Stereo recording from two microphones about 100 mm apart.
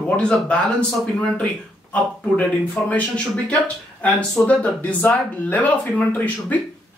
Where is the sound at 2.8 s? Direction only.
10° left (ahead or behind).